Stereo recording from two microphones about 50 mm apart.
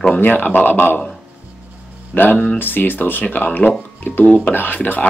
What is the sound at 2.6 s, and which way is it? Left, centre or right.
A man's voice, left.